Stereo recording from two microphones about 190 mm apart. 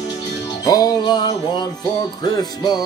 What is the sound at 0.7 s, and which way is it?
Music, 20° left (ahead or behind).